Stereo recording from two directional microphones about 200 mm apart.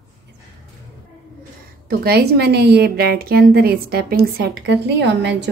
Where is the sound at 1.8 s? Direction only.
50° right (ahead or behind).